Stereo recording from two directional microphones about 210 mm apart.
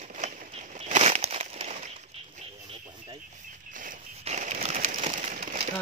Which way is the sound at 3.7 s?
35° right (ahead or behind).